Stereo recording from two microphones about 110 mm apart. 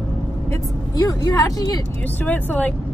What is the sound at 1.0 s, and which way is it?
Speech, 35° left (ahead or behind).